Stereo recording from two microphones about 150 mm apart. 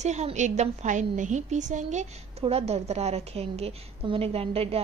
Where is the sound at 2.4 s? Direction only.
40° right (ahead or behind).